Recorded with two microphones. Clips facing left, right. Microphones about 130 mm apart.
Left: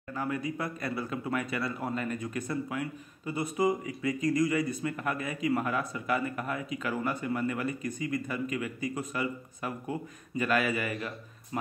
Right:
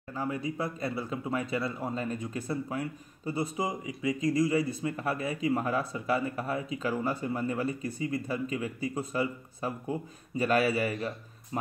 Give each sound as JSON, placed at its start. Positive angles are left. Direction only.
{"t": 0.1, "sound": "speech", "side_deg": -25}